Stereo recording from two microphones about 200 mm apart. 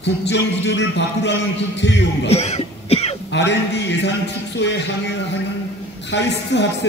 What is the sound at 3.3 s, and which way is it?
A man's voice, 60° left (ahead or behind).